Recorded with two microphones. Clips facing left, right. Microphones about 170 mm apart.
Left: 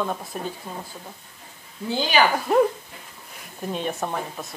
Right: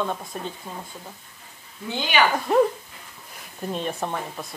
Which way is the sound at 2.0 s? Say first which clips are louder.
Left 1 dB; 35° left (ahead or behind).